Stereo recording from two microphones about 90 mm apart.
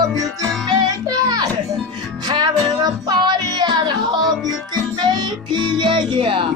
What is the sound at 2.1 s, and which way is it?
Music, 55° right (ahead or behind).